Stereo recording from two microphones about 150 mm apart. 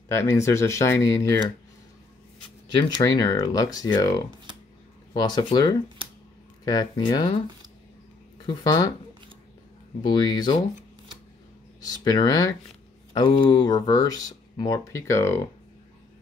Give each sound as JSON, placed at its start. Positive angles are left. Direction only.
{"t": 0.1, "sound": "speech", "side_deg": 20}
{"t": 3.0, "sound": "speech", "side_deg": 25}
{"t": 8.5, "sound": "speech", "side_deg": 30}
{"t": 10.0, "sound": "speech", "side_deg": 30}
{"t": 11.8, "sound": "speech", "side_deg": 25}